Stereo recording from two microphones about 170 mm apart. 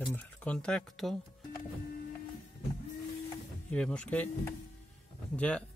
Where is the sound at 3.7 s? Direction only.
5° left (ahead or behind).